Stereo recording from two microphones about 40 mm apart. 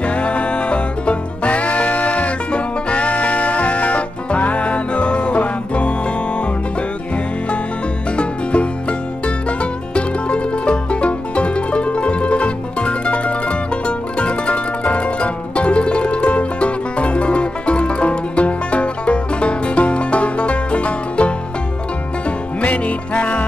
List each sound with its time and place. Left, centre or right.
0.0 s music: left
8.2 s music: left
22.6 s music: left